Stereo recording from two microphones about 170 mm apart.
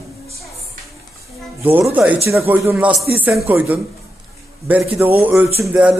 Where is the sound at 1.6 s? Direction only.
10° right (ahead or behind).